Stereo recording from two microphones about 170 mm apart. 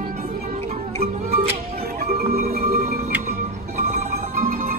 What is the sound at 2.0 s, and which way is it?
Music, 65° right (ahead or behind).